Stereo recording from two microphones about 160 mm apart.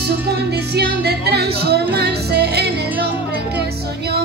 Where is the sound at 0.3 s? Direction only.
85° right.